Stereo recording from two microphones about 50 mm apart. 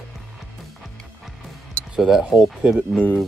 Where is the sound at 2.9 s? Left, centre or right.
Left.